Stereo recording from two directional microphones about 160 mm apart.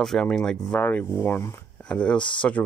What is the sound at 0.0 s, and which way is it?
Speech, 5° left (ahead or behind).